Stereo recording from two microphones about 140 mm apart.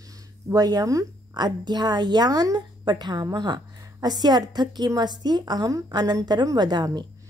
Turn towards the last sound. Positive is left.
turn(degrees=-30)  # may be behind; listen again after turning